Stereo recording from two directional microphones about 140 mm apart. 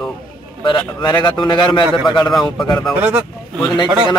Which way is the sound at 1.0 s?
35° left (ahead or behind).